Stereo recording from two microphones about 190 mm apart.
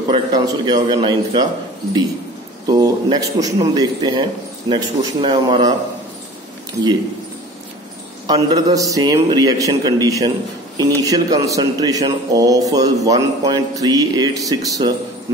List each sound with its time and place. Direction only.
0.1 s a man's voice: 20° right (ahead or behind)
2.6 s a man's voice: 20° right (ahead or behind)
8.3 s a man's voice: 20° right (ahead or behind)